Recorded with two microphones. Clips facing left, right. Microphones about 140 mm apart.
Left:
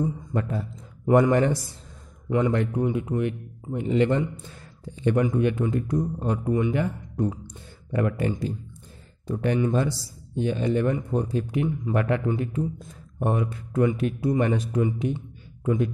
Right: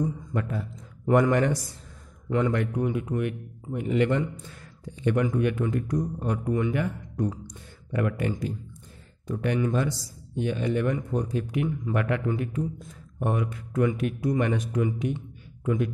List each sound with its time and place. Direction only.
0.0 s speech: 30° left (ahead or behind)